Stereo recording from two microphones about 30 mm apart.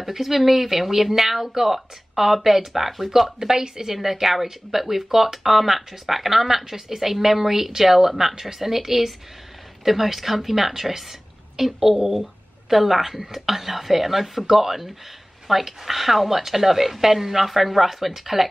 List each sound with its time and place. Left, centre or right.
0.0 s a woman's voice: centre
3.3 s a woman's voice: centre
3.9 s a woman's voice: centre